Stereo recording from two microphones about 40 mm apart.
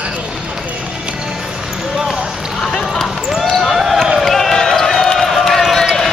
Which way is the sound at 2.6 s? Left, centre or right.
Centre.